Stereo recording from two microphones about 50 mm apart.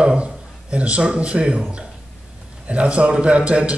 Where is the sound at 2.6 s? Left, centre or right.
Right.